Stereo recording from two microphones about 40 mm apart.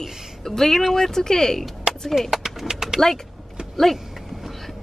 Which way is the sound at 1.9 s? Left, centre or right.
Right.